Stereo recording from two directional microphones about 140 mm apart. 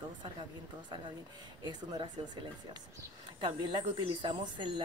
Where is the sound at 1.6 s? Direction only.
30° right (ahead or behind).